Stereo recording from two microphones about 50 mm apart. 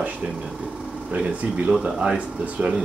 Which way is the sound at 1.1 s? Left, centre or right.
Right.